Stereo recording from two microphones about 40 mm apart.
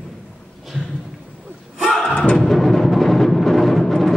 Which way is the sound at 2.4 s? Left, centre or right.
Centre.